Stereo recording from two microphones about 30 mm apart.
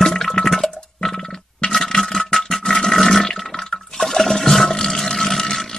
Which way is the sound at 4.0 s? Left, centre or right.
Centre.